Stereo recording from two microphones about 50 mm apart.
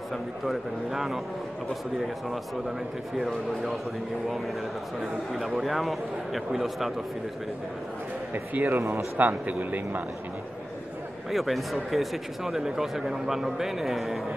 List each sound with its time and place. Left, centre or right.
0.1 s a man's voice: centre
5.0 s speech: centre
8.5 s speech: right
8.8 s speech: right
9.2 s speech: right
11.2 s speech: centre